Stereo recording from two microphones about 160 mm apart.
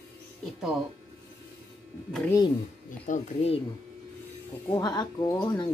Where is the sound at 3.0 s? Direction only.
45° left (ahead or behind).